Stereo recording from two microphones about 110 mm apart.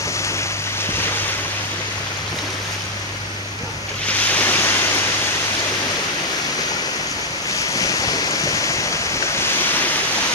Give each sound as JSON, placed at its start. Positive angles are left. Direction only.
{"t": 4.3, "sound": "waves", "side_deg": 15}
{"t": 7.7, "sound": "waves", "side_deg": 35}